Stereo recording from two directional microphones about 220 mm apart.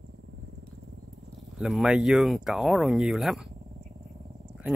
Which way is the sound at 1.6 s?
Centre (ahead or behind).